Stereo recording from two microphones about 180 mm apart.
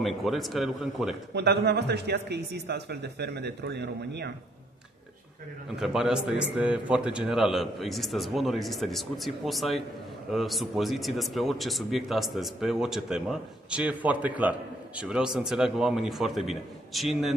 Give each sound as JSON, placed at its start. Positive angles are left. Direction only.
{"t": 0.0, "sound": "speech", "side_deg": 0}
{"t": 1.3, "sound": "speech", "side_deg": -70}
{"t": 5.8, "sound": "speech", "side_deg": -5}